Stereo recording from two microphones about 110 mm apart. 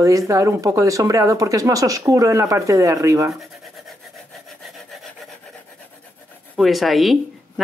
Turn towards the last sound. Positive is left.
turn(degrees=0)  # may be behind; listen again after turning